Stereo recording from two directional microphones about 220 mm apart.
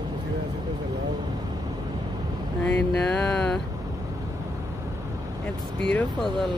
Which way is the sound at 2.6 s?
5° left (ahead or behind).